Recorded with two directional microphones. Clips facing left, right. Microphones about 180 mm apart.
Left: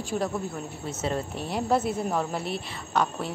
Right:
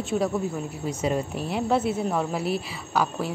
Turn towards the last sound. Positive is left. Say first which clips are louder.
# right 1 dB
turn(degrees=-5)  # may be behind; listen again after turning